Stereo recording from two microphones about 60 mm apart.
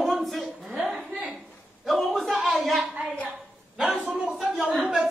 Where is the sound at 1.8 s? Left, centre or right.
Centre.